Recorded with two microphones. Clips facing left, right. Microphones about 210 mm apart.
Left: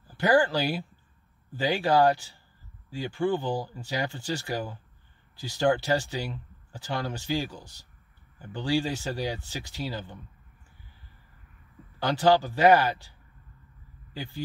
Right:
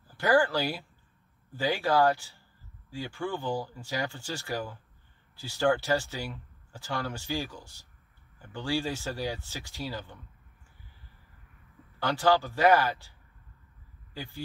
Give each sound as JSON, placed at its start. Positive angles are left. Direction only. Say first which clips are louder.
{"t": 0.2, "sound": "speech", "louder": "left 2 dB", "side_deg": 15}
{"t": 12.0, "sound": "speech", "louder": "left 3 dB", "side_deg": 15}
{"t": 14.1, "sound": "speech", "louder": "left 3 dB", "side_deg": 15}